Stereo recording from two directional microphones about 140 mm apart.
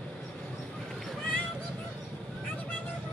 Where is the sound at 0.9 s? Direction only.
Centre (ahead or behind).